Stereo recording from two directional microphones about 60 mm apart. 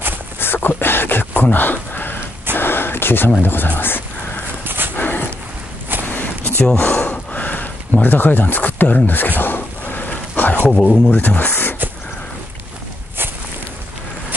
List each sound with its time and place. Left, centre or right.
0.4 s a sound: left
3.4 s speech: left
4.6 s dog: right
4.9 s dog: left
6.0 s a sound: left
10.7 s speech: centre
11.1 s speech: left